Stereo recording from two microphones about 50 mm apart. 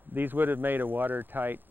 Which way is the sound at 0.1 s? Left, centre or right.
Right.